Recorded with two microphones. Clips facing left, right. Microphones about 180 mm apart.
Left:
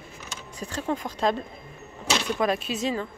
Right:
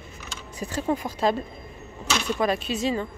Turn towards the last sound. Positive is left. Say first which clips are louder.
# right 2 dB
turn(degrees=0)  # may be behind; listen again after turning